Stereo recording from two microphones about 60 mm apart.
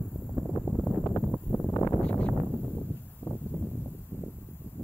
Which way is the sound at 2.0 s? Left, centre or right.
Left.